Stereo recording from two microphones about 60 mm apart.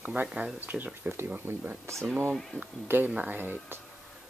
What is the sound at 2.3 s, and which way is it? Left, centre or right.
Speech, centre.